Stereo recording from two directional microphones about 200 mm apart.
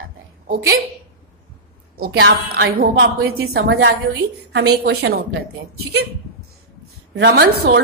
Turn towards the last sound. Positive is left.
turn(degrees=-55)  # may be behind; listen again after turning